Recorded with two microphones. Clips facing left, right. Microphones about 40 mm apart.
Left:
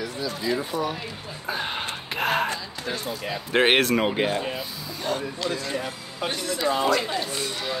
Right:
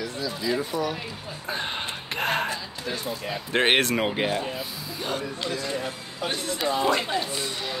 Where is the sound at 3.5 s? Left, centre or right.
Centre.